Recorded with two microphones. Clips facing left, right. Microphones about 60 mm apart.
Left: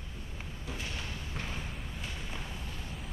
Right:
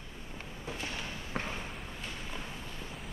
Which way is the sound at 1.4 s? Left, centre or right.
Right.